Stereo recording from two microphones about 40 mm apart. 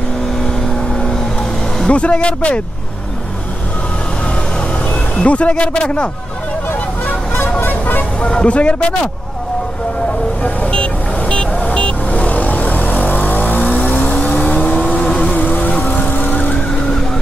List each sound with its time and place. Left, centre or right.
1.9 s speech: left
5.1 s speech: left
7.6 s vehicle: left
8.2 s speech: left
10.7 s vehicle: left
15.3 s vehicle: left